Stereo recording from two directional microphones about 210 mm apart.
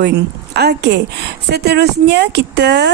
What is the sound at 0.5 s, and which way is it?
Speech, 55° right (ahead or behind).